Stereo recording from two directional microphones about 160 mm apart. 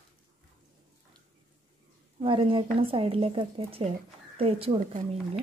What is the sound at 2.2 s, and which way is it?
A woman's voice, 35° right (ahead or behind).